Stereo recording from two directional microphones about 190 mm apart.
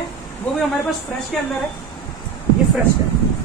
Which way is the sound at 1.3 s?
Centre (ahead or behind).